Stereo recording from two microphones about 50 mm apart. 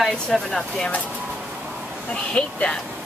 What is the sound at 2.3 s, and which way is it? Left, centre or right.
Speech, centre.